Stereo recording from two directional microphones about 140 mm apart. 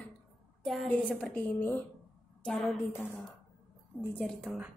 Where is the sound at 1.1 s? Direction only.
10° left (ahead or behind).